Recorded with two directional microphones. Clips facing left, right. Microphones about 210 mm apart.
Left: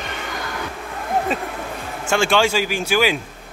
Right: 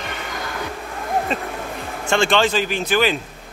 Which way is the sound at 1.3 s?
5° left (ahead or behind).